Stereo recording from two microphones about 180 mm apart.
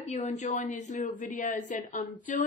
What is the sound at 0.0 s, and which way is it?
A woman's voice, 40° left (ahead or behind).